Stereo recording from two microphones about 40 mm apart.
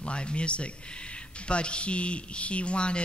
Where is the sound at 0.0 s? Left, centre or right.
Left.